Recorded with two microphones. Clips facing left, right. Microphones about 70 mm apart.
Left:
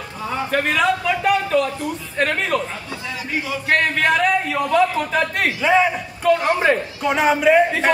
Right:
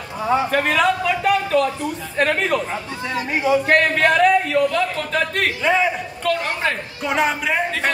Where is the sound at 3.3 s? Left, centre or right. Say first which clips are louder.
Right 8 dB; right.